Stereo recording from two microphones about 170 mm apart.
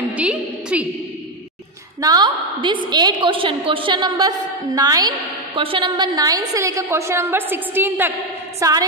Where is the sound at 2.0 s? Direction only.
25° right (ahead or behind).